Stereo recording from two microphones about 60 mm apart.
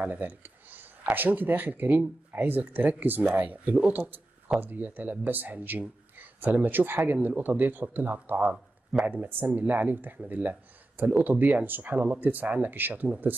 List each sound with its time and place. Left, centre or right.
0.0 s speech: right